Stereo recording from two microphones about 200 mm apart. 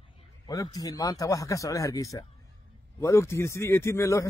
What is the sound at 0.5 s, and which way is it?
A man's voice, 20° left (ahead or behind).